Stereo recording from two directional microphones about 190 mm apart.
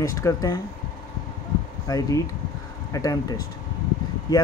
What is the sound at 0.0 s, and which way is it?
Speech, 15° left (ahead or behind).